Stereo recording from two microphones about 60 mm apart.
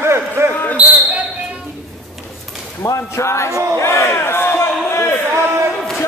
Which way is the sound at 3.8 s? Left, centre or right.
Left.